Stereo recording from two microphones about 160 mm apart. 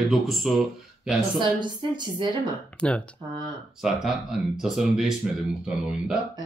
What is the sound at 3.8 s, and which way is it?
Speech, 5° right (ahead or behind).